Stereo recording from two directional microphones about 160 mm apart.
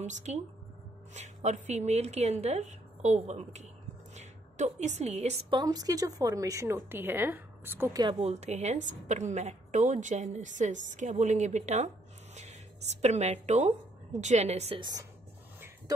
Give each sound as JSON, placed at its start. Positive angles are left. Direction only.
{"t": 0.0, "sound": "a woman's voice", "side_deg": -45}
{"t": 5.5, "sound": "a woman's voice", "side_deg": -25}
{"t": 8.0, "sound": "a woman's voice", "side_deg": -35}
{"t": 13.0, "sound": "a woman's voice", "side_deg": -45}
{"t": 14.8, "sound": "a woman's voice", "side_deg": -25}